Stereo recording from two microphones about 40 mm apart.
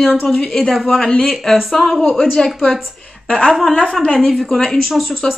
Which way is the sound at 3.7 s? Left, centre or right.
Centre.